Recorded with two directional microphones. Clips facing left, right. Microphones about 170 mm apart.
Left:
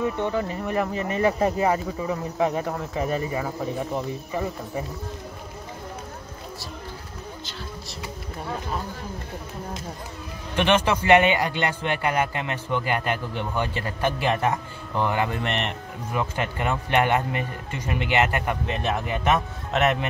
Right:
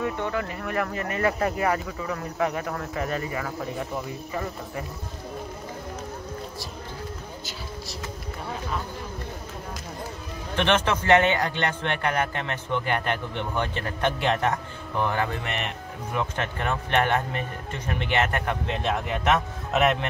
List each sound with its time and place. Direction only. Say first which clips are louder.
0.2 s speech: left 3 dB; 20° left (ahead or behind)
2.8 s speech: left 3 dB; 15° left (ahead or behind)
10.5 s speech: left 2 dB; 15° left (ahead or behind)